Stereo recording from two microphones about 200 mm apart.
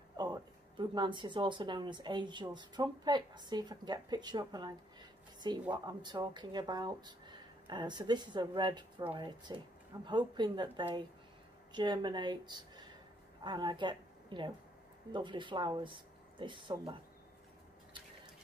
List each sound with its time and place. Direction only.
0.2 s a woman's voice: 20° right (ahead or behind)